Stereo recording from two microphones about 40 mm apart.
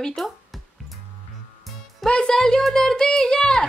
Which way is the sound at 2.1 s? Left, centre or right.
Left.